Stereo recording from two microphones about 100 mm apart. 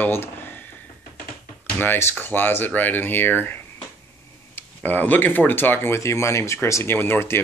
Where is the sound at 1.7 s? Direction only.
20° left (ahead or behind).